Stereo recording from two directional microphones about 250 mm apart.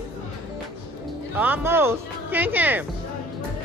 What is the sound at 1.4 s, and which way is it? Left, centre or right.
Speech, centre.